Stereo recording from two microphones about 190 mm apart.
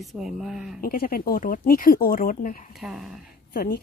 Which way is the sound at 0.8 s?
50° left (ahead or behind).